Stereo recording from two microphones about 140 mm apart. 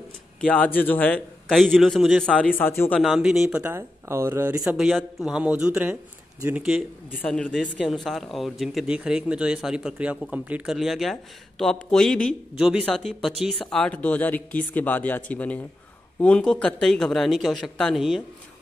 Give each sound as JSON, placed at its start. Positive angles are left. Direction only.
{"t": 0.4, "sound": "speech", "side_deg": 10}
{"t": 2.6, "sound": "speech", "side_deg": 15}
{"t": 3.0, "sound": "speech", "side_deg": -5}
{"t": 3.5, "sound": "speech", "side_deg": -15}
{"t": 4.7, "sound": "speech", "side_deg": -5}
{"t": 7.2, "sound": "speech", "side_deg": 5}